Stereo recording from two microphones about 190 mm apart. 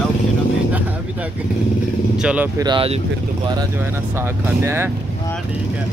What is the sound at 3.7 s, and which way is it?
Speech, 10° right (ahead or behind).